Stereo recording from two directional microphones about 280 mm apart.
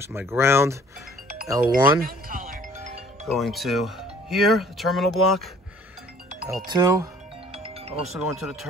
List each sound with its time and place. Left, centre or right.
0.0 s speech: centre
2.0 s music: right
3.3 s speech: centre
6.6 s speech: centre
7.5 s music: right
8.1 s speech: centre